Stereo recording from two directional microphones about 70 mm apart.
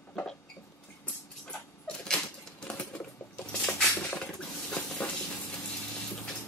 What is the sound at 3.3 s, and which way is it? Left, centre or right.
Dishes, left.